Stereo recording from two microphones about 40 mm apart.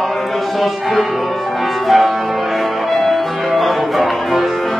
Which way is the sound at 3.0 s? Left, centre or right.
Centre.